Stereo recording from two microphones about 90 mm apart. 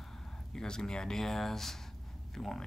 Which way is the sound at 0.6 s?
10° left (ahead or behind).